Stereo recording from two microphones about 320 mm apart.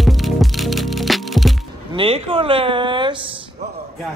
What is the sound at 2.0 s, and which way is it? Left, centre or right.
Speech, centre.